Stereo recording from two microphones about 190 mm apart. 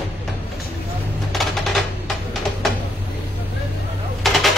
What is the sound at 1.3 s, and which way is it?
Typewriter, centre (ahead or behind).